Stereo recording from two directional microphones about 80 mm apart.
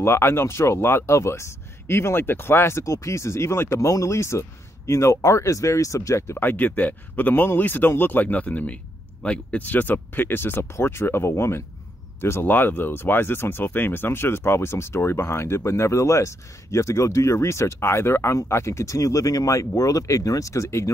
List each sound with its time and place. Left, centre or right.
0.0 s speech: left
6.4 s speech: left